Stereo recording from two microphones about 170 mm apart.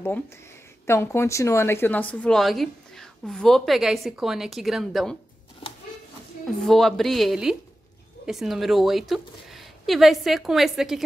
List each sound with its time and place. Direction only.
0.8 s speech: 15° left (ahead or behind); by 5.1 s centre (ahead or behind)
5.6 s a sound: 30° left (ahead or behind)
6.4 s speech: centre (ahead or behind)